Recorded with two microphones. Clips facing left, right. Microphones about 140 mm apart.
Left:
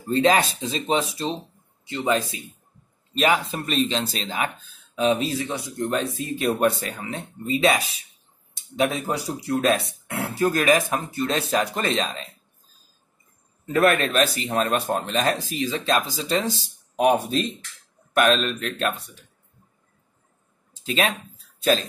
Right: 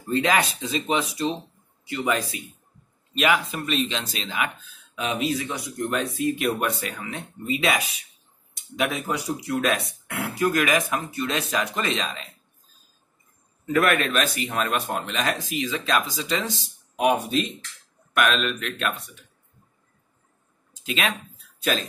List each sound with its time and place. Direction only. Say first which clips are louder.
0.1 s a man's voice: left 3 dB; 30° left (ahead or behind)
13.7 s speech: left 2 dB; 30° left (ahead or behind)
20.8 s speech: left 3 dB; 35° left (ahead or behind)